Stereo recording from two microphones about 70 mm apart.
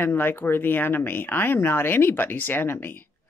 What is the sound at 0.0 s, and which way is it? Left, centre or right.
Speech, left.